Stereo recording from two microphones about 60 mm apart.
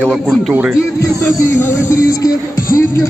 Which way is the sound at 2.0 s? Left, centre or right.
Left.